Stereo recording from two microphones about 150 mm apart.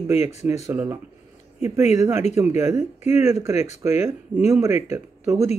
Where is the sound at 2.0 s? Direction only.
20° right (ahead or behind).